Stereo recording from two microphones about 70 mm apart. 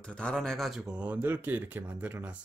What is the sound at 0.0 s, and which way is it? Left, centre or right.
Mantra, centre.